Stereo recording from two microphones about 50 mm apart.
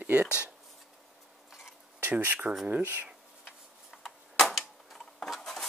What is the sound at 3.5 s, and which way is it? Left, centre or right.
Tick-tock, centre.